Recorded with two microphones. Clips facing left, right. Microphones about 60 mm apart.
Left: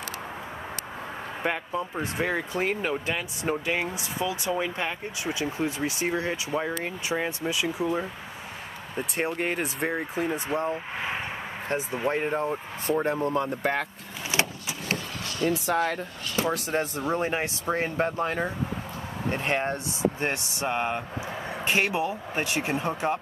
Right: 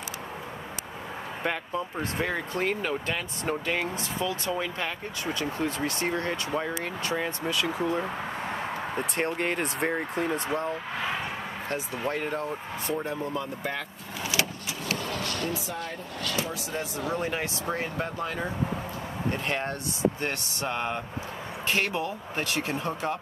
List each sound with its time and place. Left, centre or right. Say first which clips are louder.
1.4 s speech: left 2 dB; centre
9.1 s speech: left 2 dB; centre
11.7 s speech: left 4 dB; left
13.0 s speech: left 5 dB; left
14.3 s vehicle: left 3 dB; left
15.4 s speech: left 8 dB; left
16.5 s speech: left 5 dB; left
17.0 s speech: left 3 dB; left